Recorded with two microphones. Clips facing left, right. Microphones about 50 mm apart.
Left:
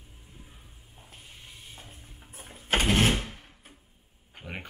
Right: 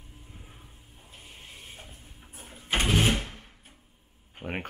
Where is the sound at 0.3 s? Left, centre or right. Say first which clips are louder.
Even; right.